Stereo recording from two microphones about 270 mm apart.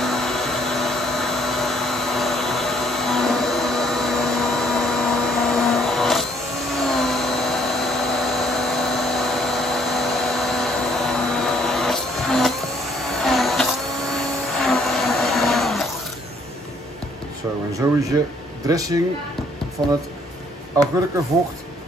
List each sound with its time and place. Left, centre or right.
0.0 s vacuum cleaner: centre
6.7 s a sound: centre
17.8 s speech: centre